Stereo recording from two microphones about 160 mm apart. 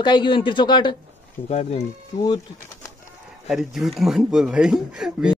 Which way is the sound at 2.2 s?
25° left (ahead or behind).